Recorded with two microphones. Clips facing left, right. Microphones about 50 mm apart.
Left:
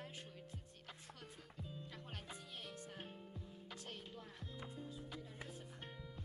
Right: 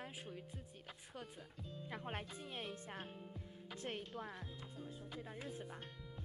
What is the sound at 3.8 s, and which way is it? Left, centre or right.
Speech, right.